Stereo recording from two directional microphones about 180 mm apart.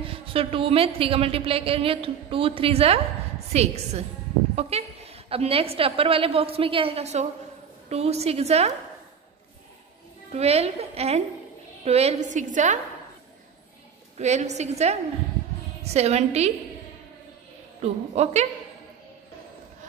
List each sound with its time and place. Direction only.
0.0 s a woman's voice: 30° right (ahead or behind)
10.3 s a woman's voice: 35° right (ahead or behind)
14.1 s a woman's voice: 40° right (ahead or behind)
17.8 s a woman's voice: 35° right (ahead or behind)